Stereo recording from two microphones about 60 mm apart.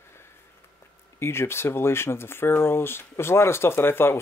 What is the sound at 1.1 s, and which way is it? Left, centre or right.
Speech, left.